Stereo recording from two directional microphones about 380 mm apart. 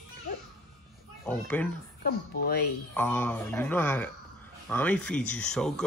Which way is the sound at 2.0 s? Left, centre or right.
Left.